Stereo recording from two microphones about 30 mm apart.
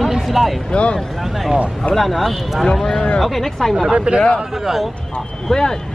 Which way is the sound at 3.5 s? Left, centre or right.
Centre.